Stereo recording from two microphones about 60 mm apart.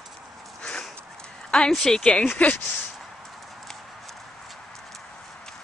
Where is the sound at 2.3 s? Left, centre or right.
Left.